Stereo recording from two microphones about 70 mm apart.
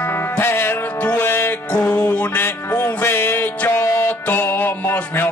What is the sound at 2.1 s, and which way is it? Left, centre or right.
Music, left.